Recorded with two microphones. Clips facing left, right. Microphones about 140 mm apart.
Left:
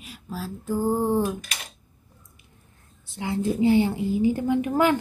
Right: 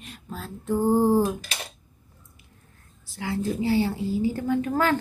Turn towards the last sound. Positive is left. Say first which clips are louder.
# left 2 dB
turn(degrees=15)  # may be behind; listen again after turning